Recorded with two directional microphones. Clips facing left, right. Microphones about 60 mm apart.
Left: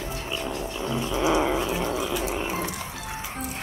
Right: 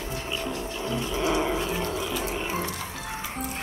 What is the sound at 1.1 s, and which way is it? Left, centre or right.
Dog, centre.